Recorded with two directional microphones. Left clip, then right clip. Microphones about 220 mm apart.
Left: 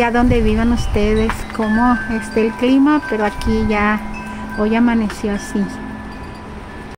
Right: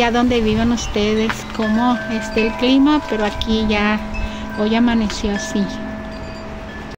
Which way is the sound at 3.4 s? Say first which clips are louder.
Left 1 dB; 30° right (ahead or behind).